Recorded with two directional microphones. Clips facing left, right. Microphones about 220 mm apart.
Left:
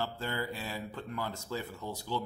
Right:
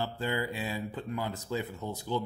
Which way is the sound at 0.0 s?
15° right (ahead or behind).